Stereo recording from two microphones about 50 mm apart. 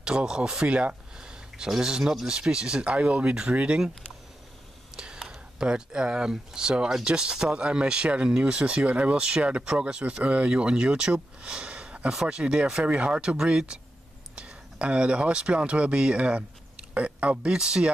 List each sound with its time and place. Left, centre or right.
0.0 s speech: centre
4.9 s whispering: centre
5.2 s speech: centre; by 17.5 s right
17.5 s speech: centre